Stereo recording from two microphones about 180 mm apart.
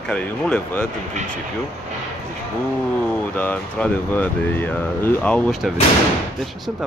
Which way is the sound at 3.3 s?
10° left (ahead or behind).